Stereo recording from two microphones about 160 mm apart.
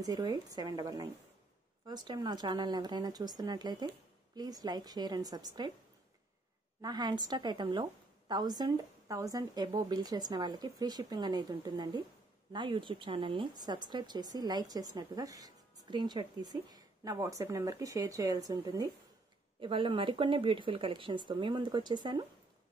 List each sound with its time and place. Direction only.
0.0 s speech: 25° right (ahead or behind)
6.8 s speech: 25° right (ahead or behind)